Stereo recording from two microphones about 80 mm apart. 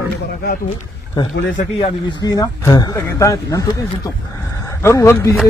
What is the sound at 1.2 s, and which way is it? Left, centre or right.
Speech, left.